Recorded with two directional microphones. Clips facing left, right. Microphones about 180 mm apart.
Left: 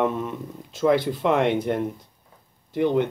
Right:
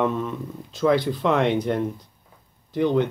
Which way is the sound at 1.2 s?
10° left (ahead or behind).